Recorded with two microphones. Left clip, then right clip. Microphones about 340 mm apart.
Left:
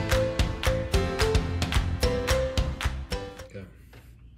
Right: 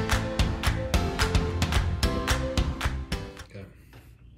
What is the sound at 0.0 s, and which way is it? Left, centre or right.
Music, centre.